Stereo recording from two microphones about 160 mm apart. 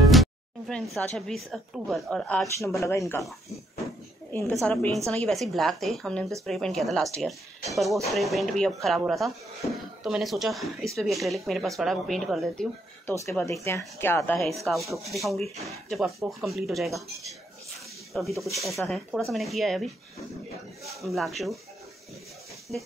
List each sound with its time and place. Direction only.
0.1 s a woman's voice: centre (ahead or behind)
2.6 s speech: 20° left (ahead or behind)
4.3 s a woman's voice: 10° left (ahead or behind)
13.0 s speech: 15° left (ahead or behind)
14.6 s a woman's voice: centre (ahead or behind)
21.0 s a woman's voice: centre (ahead or behind)